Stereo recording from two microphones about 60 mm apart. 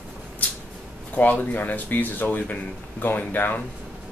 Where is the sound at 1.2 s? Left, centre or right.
Left.